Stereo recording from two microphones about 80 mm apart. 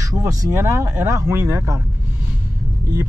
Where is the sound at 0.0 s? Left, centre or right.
Right.